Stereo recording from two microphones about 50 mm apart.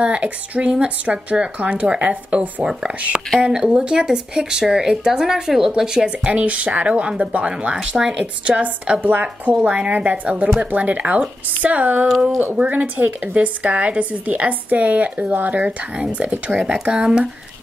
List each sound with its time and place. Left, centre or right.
0.0 s a woman's voice: right
2.6 s speech: centre
2.9 s a woman's voice: right
3.5 s a woman's voice: centre
9.0 s a woman's voice: right; by 17.3 s centre